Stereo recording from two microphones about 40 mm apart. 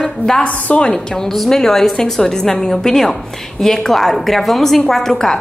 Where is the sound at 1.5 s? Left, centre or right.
Centre.